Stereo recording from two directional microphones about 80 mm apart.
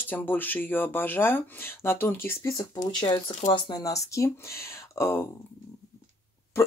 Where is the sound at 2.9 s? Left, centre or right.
Left.